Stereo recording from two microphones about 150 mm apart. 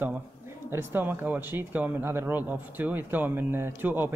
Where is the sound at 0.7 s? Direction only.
15° right (ahead or behind).